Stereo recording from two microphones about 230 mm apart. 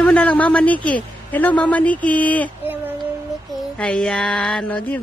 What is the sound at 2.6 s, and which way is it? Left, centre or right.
Child singing, centre.